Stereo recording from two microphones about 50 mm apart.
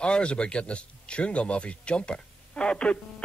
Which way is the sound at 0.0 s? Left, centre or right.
Left.